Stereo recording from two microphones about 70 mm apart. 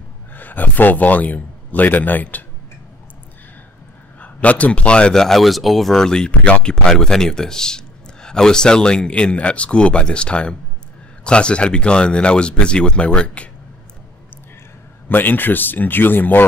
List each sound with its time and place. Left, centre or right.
0.3 s speech: left
4.2 s speech: centre
15.0 s speech: left